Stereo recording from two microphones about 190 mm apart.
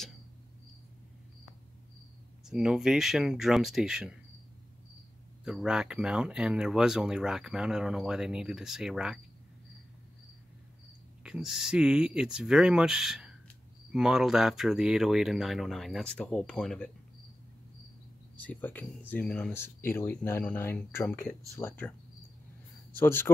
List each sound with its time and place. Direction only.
2.4 s speech: 5° right (ahead or behind)
5.4 s speech: 5° right (ahead or behind)
11.2 s speech: 5° right (ahead or behind)
18.3 s speech: 10° left (ahead or behind)
22.9 s speech: 10° left (ahead or behind)